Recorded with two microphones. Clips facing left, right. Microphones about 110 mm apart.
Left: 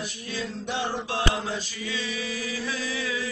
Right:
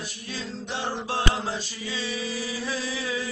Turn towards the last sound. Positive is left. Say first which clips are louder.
# even
turn(degrees=-30)  # may be behind; listen again after turning